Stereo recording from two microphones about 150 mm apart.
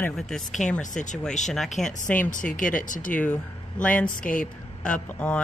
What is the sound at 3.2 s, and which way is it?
Speech, 10° left (ahead or behind).